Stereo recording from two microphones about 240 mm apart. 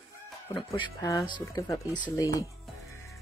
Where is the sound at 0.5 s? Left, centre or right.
Centre.